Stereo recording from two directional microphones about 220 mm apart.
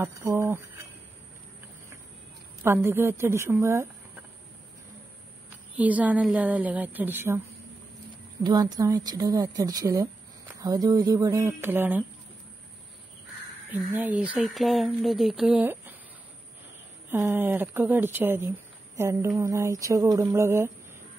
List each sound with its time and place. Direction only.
0.0 s speech: 10° right (ahead or behind)
2.6 s speech: 10° right (ahead or behind)
5.8 s speech: 5° right (ahead or behind)
8.5 s speech: 15° right (ahead or behind)
13.9 s speech: 5° right (ahead or behind)
17.1 s speech: 10° right (ahead or behind)